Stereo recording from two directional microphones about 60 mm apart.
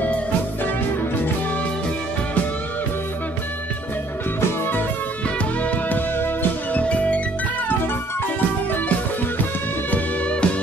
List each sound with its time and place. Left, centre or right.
5.6 s music: left
6.8 s music: left
9.8 s music: left